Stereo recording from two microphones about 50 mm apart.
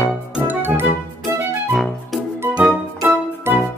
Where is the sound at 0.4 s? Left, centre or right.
Right.